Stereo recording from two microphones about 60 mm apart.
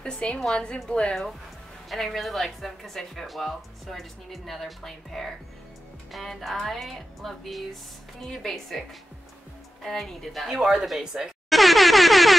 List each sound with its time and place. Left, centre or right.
0.0 s a woman's voice: centre
1.9 s speech: centre
10.5 s air horn: centre